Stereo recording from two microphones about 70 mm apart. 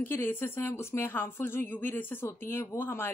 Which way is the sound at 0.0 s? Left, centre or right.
Left.